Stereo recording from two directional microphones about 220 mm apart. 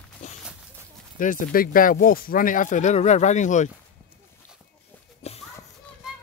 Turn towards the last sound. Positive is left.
turn(degrees=30)  # may be behind; listen again after turning